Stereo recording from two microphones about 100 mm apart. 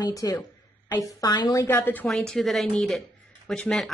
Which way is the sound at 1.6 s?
20° left (ahead or behind).